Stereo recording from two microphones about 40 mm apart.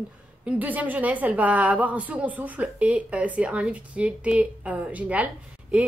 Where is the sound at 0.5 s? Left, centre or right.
Right.